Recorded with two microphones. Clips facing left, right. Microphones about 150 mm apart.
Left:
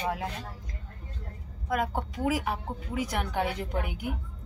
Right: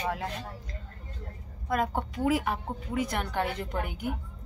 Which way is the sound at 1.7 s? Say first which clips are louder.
Right 1 dB; 10° left (ahead or behind).